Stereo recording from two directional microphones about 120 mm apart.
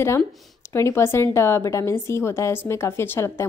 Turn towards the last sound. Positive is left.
turn(degrees=20)  # may be behind; listen again after turning